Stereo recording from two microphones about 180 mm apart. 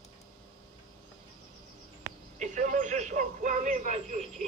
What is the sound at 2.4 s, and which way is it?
Radio, 45° right (ahead or behind).